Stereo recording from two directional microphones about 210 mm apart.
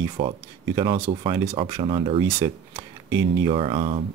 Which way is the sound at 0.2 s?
25° right (ahead or behind).